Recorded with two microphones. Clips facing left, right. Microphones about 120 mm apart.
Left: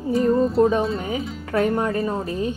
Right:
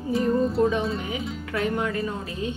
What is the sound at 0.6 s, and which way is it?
A woman's voice, 40° left (ahead or behind).